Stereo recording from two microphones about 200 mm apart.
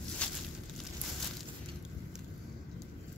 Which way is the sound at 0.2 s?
5° left (ahead or behind).